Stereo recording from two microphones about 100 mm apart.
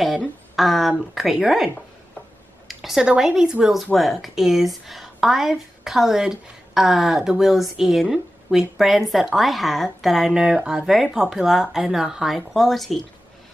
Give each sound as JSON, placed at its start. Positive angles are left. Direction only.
{"t": 0.6, "sound": "speech", "side_deg": 0}
{"t": 2.7, "sound": "speech", "side_deg": -5}